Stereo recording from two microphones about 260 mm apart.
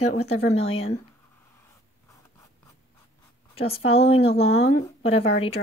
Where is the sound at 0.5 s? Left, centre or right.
Left.